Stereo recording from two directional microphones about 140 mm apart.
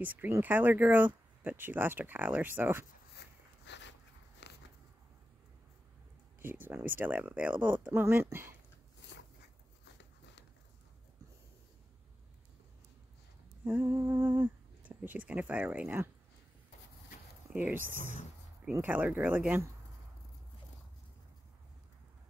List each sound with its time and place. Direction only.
0.0 s speech: 10° right (ahead or behind)
6.4 s speech: 15° right (ahead or behind)
13.7 s speech: 15° right (ahead or behind)
17.5 s speech: 10° right (ahead or behind)